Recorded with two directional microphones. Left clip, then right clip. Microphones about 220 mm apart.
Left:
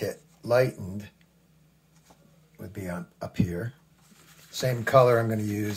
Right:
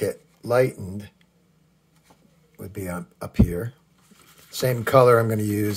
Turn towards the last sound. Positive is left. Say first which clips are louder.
# right 6 dB
turn(degrees=-45)  # may be behind; listen again after turning